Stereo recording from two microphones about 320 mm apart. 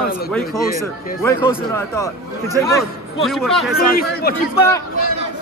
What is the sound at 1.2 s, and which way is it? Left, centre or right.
A man's voice, centre.